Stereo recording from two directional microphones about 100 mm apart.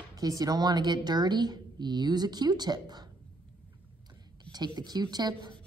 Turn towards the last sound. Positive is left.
turn(degrees=-40)  # may be behind; listen again after turning